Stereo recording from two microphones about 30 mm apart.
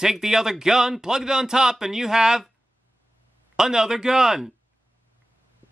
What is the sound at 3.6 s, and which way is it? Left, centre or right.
Speech, centre.